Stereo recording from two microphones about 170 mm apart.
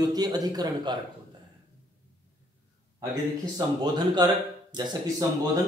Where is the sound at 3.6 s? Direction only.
20° right (ahead or behind).